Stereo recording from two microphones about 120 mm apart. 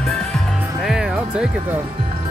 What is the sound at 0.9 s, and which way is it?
Speech, 10° right (ahead or behind).